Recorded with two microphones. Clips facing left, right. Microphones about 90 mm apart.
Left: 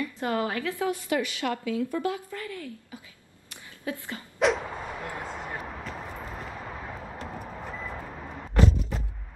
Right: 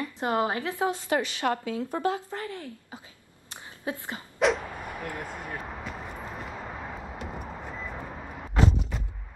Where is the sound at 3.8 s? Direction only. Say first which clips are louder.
Even; 20° right (ahead or behind).